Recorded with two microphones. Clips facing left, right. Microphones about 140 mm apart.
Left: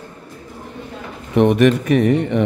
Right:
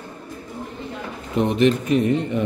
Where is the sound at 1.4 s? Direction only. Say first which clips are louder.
Left 5 dB; 65° left (ahead or behind).